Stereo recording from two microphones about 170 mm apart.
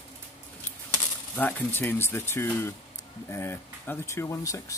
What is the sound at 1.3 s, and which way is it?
Speech, 10° left (ahead or behind).